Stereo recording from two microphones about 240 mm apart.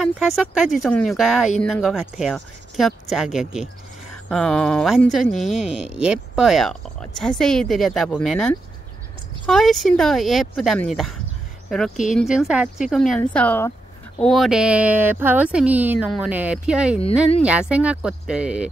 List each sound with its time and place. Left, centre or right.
0.0 s speech: centre